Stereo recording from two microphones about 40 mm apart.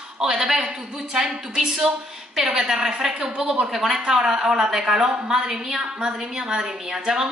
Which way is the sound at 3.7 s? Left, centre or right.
Centre.